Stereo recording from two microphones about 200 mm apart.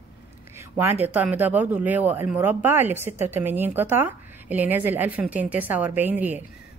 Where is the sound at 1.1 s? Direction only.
10° right (ahead or behind).